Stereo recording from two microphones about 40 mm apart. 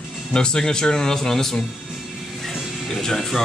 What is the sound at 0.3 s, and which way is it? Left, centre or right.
Speech, centre.